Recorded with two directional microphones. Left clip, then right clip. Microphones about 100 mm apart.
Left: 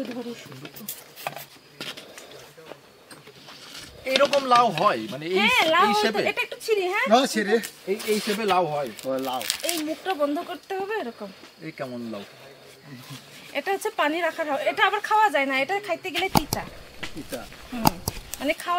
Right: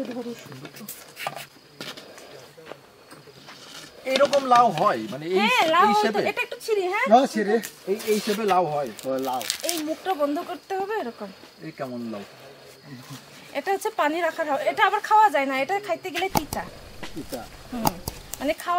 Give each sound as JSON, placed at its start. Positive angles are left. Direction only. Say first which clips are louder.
{"t": 0.0, "sound": "speech", "louder": "right 1 dB", "side_deg": -5}
{"t": 1.2, "sound": "chopping", "louder": "right 2 dB", "side_deg": 0}
{"t": 3.7, "sound": "speech", "louder": "even", "side_deg": 0}
{"t": 5.4, "sound": "a woman's voice", "louder": "even", "side_deg": -10}
{"t": 5.9, "sound": "speech", "louder": "right 1 dB", "side_deg": 5}
{"t": 6.2, "sound": "a woman's voice", "louder": "left 1 dB", "side_deg": -10}
{"t": 7.1, "sound": "speech", "louder": "right 2 dB", "side_deg": 20}
{"t": 8.0, "sound": "a woman's voice", "louder": "right 1 dB", "side_deg": -10}
{"t": 8.4, "sound": "speech", "louder": "even", "side_deg": 10}
{"t": 9.2, "sound": "a woman's voice", "louder": "even", "side_deg": -5}
{"t": 11.6, "sound": "speech", "louder": "right 1 dB", "side_deg": 10}
{"t": 13.1, "sound": "a woman's voice", "louder": "left 1 dB", "side_deg": -10}
{"t": 16.3, "sound": "speech", "louder": "left 3 dB", "side_deg": 0}
{"t": 17.8, "sound": "a sound", "louder": "left 3 dB", "side_deg": -5}